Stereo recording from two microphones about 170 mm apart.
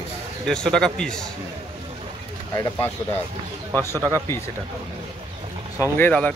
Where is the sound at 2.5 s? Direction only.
20° left (ahead or behind).